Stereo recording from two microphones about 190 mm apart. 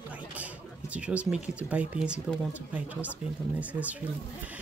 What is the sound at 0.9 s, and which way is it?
Speech, 5° right (ahead or behind).